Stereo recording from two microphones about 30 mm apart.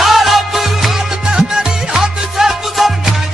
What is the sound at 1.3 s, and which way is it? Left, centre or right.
Music, right.